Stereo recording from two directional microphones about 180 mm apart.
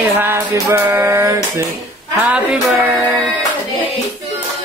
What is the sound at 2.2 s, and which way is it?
Music, 5° right (ahead or behind).